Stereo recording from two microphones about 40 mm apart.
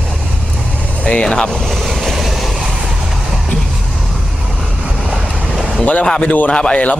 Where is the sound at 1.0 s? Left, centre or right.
Left.